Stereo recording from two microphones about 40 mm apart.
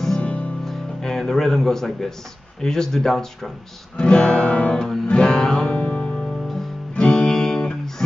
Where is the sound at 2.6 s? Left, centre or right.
Centre.